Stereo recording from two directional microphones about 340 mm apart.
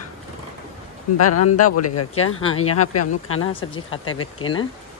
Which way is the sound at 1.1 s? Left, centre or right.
Left.